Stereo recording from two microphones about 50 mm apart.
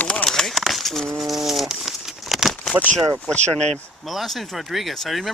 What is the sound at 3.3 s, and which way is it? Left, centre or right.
Speech, left.